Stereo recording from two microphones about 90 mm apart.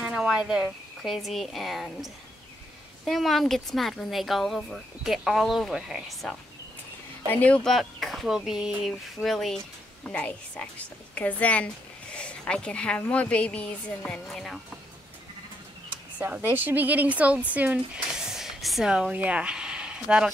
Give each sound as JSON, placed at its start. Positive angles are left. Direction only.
{"t": 0.0, "sound": "speech", "side_deg": -10}
{"t": 7.2, "sound": "a woman's voice", "side_deg": 15}
{"t": 7.6, "sound": "speech", "side_deg": 0}
{"t": 10.0, "sound": "a woman's voice", "side_deg": 15}
{"t": 14.2, "sound": "speech", "side_deg": 0}
{"t": 16.2, "sound": "speech", "side_deg": -25}
{"t": 18.1, "sound": "a sound", "side_deg": -5}
{"t": 19.1, "sound": "speech", "side_deg": -15}